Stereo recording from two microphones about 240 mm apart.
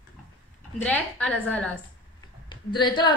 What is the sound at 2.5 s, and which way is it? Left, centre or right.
Speech, centre.